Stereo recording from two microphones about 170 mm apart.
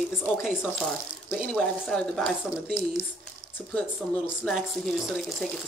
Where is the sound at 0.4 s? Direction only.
Centre (ahead or behind).